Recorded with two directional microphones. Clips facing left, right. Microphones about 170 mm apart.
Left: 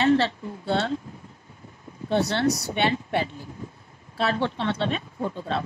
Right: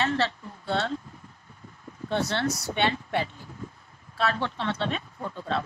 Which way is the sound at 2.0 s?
35° left (ahead or behind).